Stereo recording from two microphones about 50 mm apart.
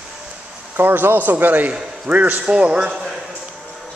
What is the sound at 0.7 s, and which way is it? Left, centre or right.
A man's voice, right.